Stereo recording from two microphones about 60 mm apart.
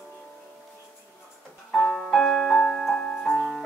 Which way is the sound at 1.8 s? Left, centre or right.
Left.